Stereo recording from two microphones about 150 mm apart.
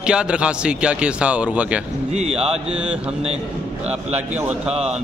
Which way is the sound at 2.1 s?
45° right (ahead or behind).